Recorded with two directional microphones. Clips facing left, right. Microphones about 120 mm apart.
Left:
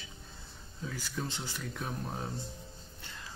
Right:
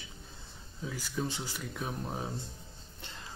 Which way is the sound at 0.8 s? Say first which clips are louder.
Right 3 dB; 5° right (ahead or behind).